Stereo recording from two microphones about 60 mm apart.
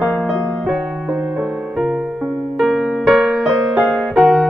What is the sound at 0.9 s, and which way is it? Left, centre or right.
Music, centre.